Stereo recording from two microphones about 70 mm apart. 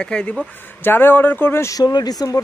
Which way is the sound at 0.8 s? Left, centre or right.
Left.